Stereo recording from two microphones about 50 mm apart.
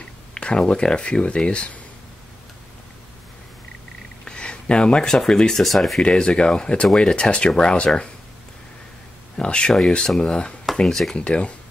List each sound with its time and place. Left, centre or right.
0.3 s speech: left
4.2 s speech: centre
6.0 s speech: centre
9.4 s speech: centre
10.9 s speech: centre
11.1 s speech: left